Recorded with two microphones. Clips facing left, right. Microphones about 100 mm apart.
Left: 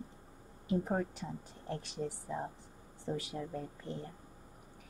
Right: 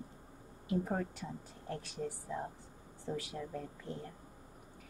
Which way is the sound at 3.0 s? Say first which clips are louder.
Left 2 dB; 5° left (ahead or behind).